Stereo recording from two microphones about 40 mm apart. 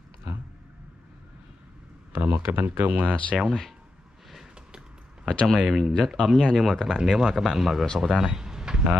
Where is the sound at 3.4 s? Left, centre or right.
Centre.